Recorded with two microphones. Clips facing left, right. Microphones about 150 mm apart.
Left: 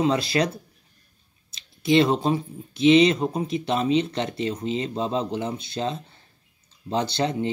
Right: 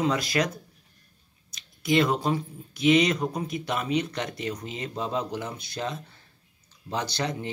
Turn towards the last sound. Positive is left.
turn(degrees=25)  # may be behind; listen again after turning